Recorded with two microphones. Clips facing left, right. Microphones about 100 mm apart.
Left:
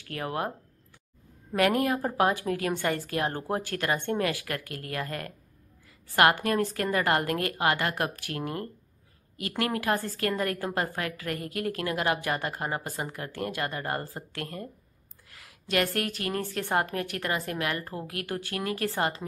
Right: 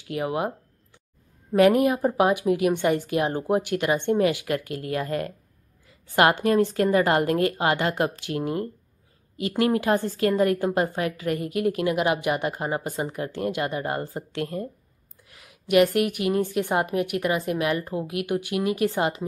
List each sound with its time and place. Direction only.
0.0 s speech: 15° right (ahead or behind)
1.5 s a woman's voice: 20° right (ahead or behind)